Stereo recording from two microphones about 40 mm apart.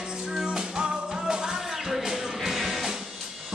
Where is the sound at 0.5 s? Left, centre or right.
Right.